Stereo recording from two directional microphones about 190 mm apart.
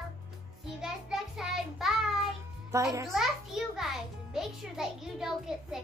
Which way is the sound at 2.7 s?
15° right (ahead or behind).